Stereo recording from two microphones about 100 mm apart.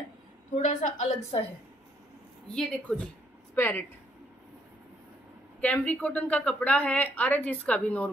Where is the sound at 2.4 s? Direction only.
10° left (ahead or behind).